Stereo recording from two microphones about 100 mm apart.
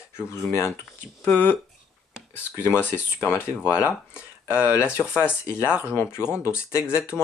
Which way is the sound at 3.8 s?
15° right (ahead or behind).